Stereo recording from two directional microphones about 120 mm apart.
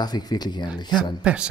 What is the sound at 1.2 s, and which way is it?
Speech, 10° right (ahead or behind).